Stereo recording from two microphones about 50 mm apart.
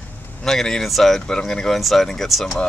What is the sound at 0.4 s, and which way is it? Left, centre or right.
Speech, centre.